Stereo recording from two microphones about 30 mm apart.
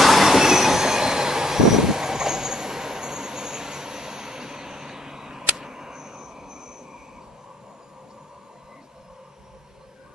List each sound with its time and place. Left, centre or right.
0.0 s train: centre